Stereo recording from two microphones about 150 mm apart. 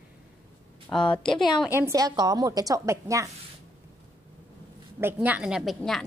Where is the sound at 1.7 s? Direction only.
20° right (ahead or behind).